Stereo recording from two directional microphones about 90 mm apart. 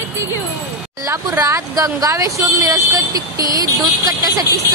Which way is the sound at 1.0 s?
40° right (ahead or behind).